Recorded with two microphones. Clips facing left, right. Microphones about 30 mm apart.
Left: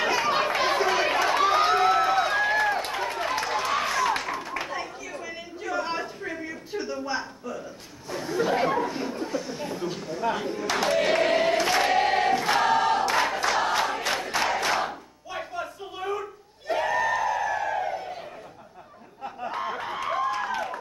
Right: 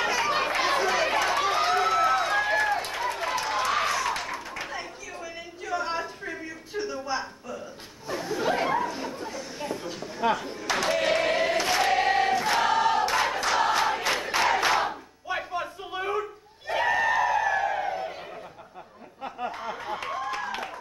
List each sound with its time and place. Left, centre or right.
0.0 s chatter: centre
6.3 s a sound: centre
8.2 s chatter: centre
10.6 s choir: centre
13.8 s crowd: centre
14.6 s battle cry: centre
15.2 s a sound: right
16.7 s crowd: centre
20.2 s a sound: centre